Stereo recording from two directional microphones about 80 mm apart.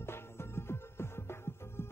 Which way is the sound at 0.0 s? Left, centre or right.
Left.